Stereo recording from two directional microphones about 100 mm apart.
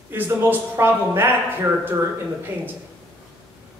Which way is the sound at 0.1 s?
20° right (ahead or behind).